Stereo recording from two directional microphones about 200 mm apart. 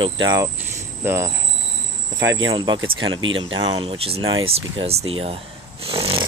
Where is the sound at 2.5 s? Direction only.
20° right (ahead or behind).